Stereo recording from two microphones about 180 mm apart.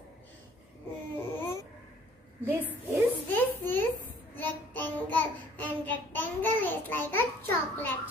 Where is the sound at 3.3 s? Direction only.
10° left (ahead or behind).